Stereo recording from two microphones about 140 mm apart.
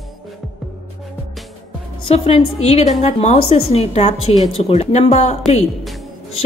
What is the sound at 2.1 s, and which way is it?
A woman's voice, 45° left (ahead or behind).